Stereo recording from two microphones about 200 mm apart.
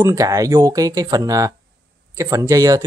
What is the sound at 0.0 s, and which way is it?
Speech, 15° right (ahead or behind).